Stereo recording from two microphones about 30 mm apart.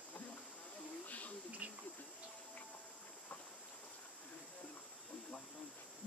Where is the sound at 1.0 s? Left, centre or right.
Left.